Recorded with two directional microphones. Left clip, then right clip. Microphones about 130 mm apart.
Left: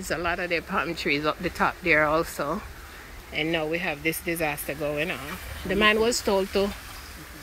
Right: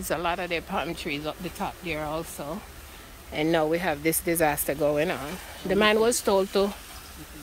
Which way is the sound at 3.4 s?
45° right (ahead or behind).